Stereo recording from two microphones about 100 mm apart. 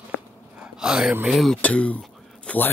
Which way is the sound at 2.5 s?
10° left (ahead or behind).